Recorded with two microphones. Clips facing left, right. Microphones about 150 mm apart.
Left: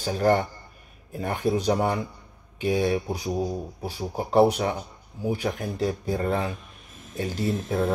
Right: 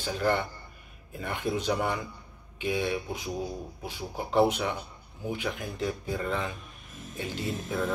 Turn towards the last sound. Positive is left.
turn(degrees=35)  # may be behind; listen again after turning